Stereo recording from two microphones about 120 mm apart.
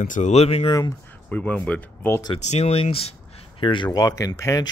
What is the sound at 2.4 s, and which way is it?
Speech, 65° left (ahead or behind).